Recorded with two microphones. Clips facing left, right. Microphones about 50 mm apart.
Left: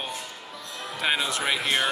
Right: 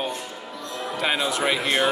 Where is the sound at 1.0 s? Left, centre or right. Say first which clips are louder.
Right 2 dB; centre.